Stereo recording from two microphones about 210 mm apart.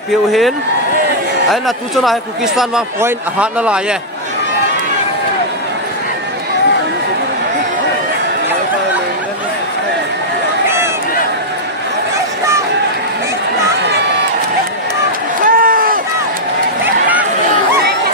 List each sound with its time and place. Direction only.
0.3 s a man's voice: centre (ahead or behind)
2.0 s a man's voice: centre (ahead or behind)
15.4 s a sound: 40° right (ahead or behind)